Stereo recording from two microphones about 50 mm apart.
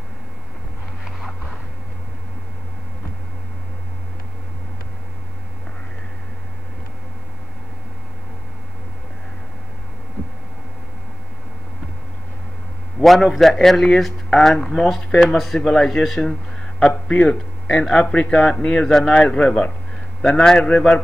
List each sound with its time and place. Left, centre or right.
1.0 s a sound: centre
13.0 s speech: centre
16.8 s speech: centre
18.3 s a man's voice: centre